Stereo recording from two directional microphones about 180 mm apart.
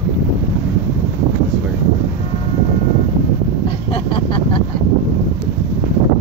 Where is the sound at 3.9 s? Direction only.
30° left (ahead or behind).